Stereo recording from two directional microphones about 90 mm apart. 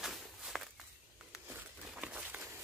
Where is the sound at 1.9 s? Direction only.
15° right (ahead or behind).